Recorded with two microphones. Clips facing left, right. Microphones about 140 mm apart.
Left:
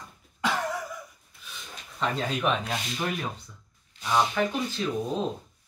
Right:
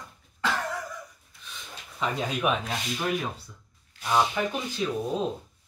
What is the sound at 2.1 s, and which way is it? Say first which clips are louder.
Speech: right 1 dB; 10° right (ahead or behind).